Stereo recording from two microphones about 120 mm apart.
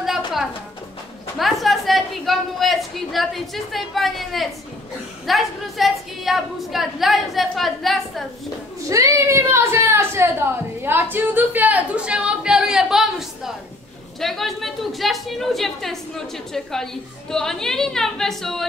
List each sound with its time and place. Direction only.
1.4 s a woman's voice: centre (ahead or behind)
8.8 s a woman's voice: 25° right (ahead or behind); by 18.7 s 5° left (ahead or behind)